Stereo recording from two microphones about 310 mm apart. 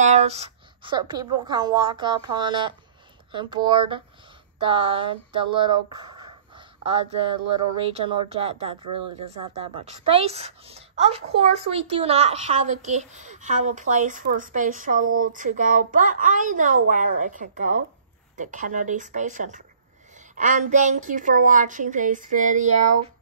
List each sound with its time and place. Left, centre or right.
0.0 s speech: right
9.8 s a woman's voice: centre